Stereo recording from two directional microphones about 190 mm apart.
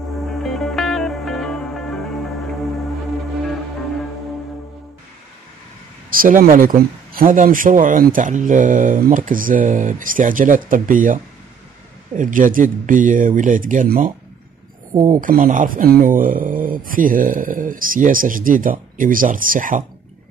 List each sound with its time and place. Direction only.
0.4 s music: centre (ahead or behind)
6.1 s speech: 45° right (ahead or behind)
12.2 s speech: 45° right (ahead or behind)